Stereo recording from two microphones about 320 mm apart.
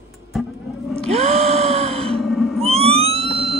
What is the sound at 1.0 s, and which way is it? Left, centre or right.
Gasp, centre.